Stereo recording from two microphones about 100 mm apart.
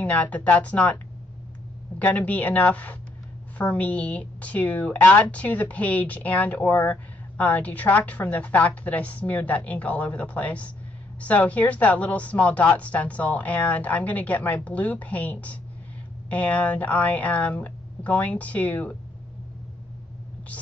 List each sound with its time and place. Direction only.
0.0 s speech: 15° left (ahead or behind)
2.0 s speech: 15° left (ahead or behind)